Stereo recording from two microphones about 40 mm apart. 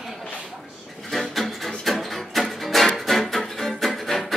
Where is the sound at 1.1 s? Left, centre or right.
Centre.